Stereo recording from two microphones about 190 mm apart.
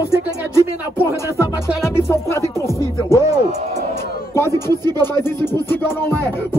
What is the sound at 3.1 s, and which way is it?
Music, 20° right (ahead or behind).